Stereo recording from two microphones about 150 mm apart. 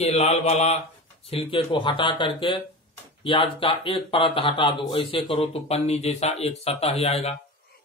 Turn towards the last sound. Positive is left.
turn(degrees=45)  # may be behind; listen again after turning